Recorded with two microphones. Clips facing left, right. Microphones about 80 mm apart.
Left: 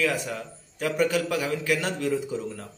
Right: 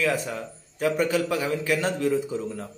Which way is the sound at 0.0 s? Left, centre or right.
Right.